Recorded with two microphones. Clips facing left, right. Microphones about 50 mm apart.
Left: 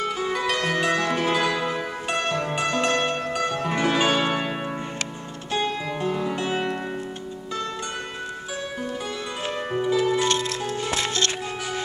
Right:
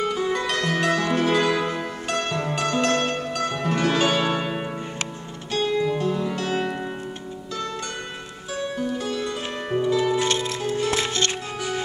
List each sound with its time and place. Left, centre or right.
0.0 s music: centre
8.9 s music: centre
9.9 s music: centre
10.2 s music: right